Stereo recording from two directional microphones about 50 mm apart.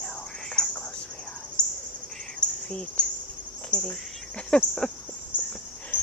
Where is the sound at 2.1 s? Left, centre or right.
Centre.